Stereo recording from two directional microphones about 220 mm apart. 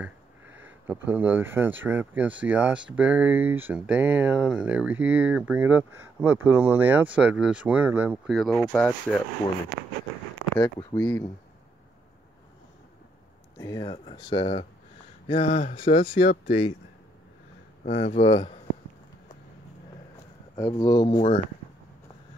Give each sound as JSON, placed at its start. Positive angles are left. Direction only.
{"t": 0.6, "sound": "speech", "side_deg": -10}
{"t": 10.5, "sound": "speech", "side_deg": 15}
{"t": 13.6, "sound": "speech", "side_deg": 15}
{"t": 17.8, "sound": "speech", "side_deg": 35}
{"t": 20.5, "sound": "speech", "side_deg": 15}